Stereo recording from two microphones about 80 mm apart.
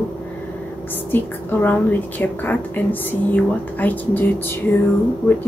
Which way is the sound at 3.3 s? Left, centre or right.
Left.